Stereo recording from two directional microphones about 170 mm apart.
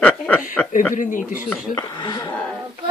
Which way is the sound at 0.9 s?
50° left (ahead or behind).